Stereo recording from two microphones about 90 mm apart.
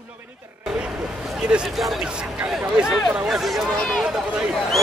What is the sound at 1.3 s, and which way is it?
Speech, 10° right (ahead or behind).